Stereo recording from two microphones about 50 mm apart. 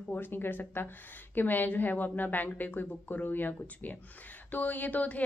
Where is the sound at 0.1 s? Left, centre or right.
Left.